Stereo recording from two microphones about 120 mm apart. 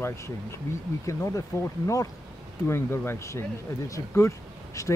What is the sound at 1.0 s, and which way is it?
Speech, 25° left (ahead or behind).